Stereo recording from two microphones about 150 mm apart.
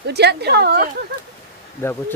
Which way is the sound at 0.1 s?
90° right.